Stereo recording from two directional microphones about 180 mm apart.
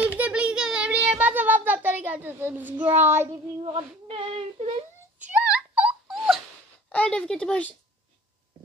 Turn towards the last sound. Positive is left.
turn(degrees=5)  # may be behind; listen again after turning